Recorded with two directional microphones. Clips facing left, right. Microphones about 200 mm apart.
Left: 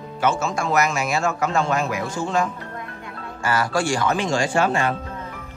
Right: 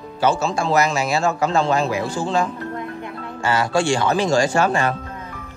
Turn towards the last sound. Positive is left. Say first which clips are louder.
# right 2 dB
turn(degrees=-45)  # may be behind; listen again after turning